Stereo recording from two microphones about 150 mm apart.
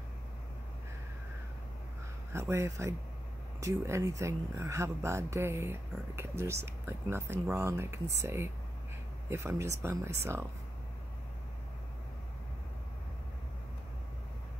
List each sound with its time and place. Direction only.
2.3 s speech: 15° right (ahead or behind)